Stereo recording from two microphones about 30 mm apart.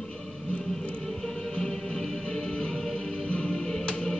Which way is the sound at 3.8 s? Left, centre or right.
Left.